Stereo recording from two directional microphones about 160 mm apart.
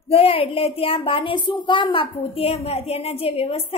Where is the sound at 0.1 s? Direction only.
35° left (ahead or behind).